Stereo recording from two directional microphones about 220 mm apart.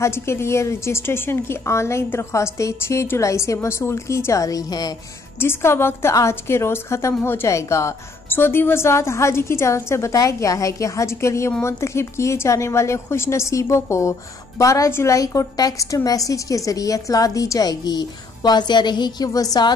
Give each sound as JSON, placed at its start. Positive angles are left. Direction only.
{"t": 0.0, "sound": "a woman's voice", "side_deg": 10}